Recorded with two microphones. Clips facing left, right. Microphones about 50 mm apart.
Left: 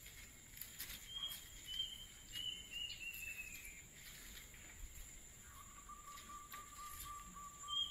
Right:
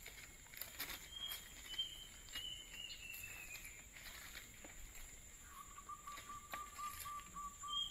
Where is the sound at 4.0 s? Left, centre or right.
Right.